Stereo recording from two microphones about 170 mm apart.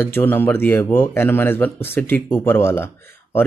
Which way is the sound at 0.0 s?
10° left (ahead or behind).